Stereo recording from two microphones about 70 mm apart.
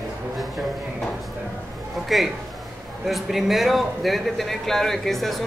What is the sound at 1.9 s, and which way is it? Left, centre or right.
A man's voice, centre.